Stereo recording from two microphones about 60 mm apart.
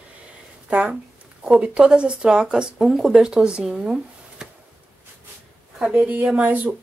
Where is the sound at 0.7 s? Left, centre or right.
Right.